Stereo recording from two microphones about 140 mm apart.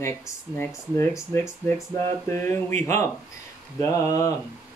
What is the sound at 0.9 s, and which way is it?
Speech, 20° left (ahead or behind).